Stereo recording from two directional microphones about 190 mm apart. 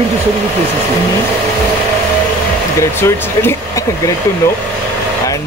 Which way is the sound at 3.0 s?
15° left (ahead or behind).